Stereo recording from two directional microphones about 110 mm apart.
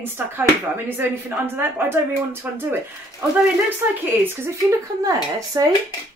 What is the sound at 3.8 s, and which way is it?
Speech, 20° right (ahead or behind).